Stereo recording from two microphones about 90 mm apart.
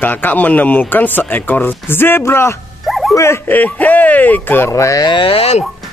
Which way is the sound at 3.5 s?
20° left (ahead or behind).